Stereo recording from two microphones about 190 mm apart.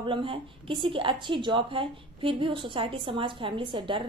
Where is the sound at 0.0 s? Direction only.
25° right (ahead or behind).